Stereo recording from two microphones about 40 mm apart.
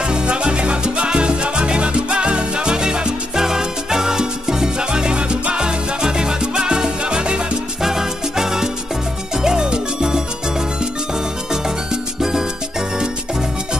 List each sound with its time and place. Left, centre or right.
0.0 s salsa music: right
7.8 s music: centre
11.5 s music: centre